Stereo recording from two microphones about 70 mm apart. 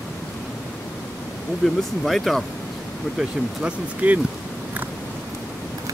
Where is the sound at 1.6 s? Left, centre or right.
Centre.